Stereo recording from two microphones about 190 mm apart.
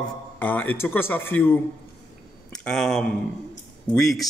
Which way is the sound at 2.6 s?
5° left (ahead or behind).